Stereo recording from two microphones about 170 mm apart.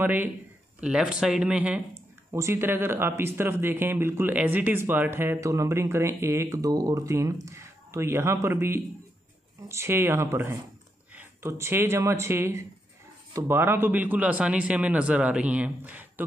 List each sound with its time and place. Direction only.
0.0 s a man's voice: 10° right (ahead or behind)